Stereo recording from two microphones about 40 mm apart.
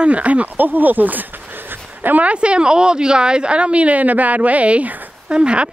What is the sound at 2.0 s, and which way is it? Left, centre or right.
Speech, right.